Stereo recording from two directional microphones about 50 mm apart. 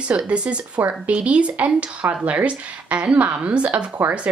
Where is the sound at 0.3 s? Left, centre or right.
Right.